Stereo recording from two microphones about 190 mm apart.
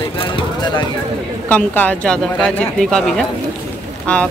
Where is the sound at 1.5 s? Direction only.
10° left (ahead or behind).